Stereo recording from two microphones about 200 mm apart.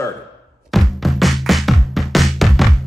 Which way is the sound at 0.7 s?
Centre (ahead or behind).